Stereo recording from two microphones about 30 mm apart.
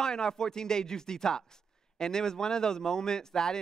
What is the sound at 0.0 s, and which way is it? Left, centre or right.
Speech, left.